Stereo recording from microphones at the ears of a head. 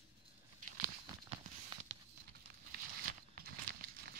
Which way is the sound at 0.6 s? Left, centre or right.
Right.